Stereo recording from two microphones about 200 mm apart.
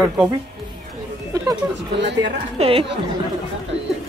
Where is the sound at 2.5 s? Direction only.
30° right (ahead or behind).